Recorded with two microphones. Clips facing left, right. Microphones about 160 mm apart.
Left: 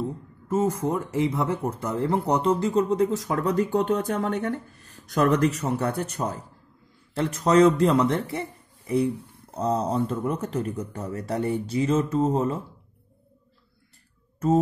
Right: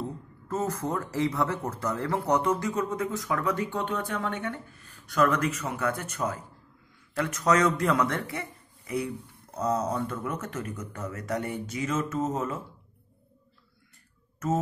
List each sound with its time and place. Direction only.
0.5 s speech: 25° left (ahead or behind)
7.2 s speech: 30° left (ahead or behind)
8.3 s a sound: 30° left (ahead or behind)
9.6 s speech: 30° left (ahead or behind)